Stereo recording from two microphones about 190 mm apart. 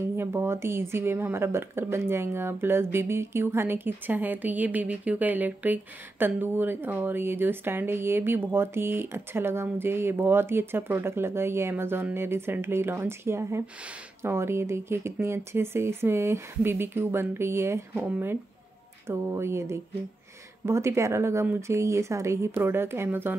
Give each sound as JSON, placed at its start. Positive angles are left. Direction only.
{"t": 0.1, "sound": "speech", "side_deg": -15}